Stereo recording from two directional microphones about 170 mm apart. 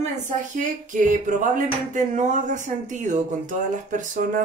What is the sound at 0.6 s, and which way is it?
Speech, 50° right (ahead or behind).